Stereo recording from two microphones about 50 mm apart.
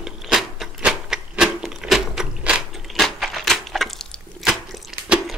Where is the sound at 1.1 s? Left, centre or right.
Centre.